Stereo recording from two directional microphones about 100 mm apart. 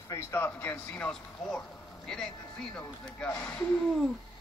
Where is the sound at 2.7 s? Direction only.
15° left (ahead or behind).